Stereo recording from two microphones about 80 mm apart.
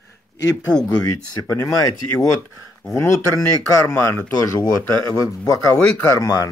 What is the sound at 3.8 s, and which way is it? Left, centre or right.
Speech, left.